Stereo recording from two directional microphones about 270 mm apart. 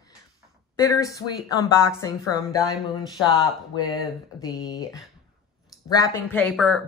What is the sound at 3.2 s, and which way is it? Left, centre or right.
A woman's voice, centre.